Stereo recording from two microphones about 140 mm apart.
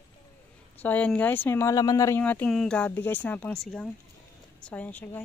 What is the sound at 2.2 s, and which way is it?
Speech, 10° left (ahead or behind).